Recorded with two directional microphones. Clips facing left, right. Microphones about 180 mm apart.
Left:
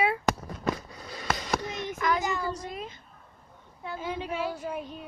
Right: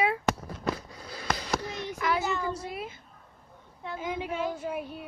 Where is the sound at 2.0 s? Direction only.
10° right (ahead or behind).